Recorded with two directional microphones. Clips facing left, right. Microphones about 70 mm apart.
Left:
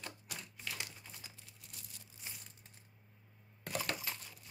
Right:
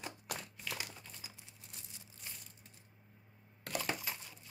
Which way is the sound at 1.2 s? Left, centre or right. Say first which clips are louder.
Right 1 dB; centre.